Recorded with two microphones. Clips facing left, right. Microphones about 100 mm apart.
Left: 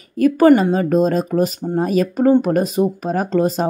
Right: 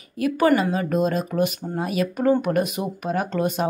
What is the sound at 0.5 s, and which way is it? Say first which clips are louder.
Speech: left 6 dB; 30° left (ahead or behind).